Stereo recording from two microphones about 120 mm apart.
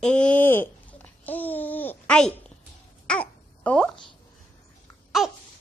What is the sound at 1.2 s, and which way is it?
Babbling, 15° left (ahead or behind).